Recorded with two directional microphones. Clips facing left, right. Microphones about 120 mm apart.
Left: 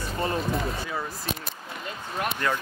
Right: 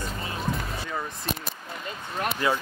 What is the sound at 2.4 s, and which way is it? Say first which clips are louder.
Speech: right 3 dB; 10° right (ahead or behind).